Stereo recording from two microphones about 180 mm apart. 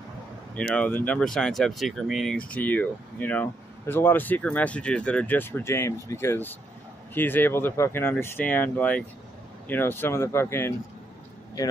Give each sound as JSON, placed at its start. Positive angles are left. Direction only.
{"t": 0.6, "sound": "speech", "side_deg": 5}